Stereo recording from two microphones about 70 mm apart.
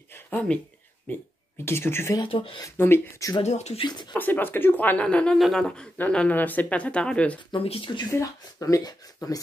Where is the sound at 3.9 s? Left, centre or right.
Left.